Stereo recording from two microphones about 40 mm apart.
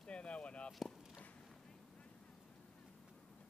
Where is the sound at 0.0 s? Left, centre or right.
Left.